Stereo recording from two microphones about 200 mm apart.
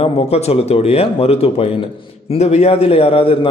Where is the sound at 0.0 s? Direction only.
30° left (ahead or behind).